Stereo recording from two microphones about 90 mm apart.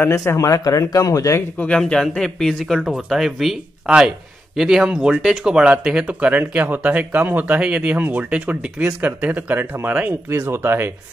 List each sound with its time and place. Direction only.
0.0 s speech: 30° left (ahead or behind)
1.8 s speech: 5° left (ahead or behind); by 10.9 s 25° right (ahead or behind)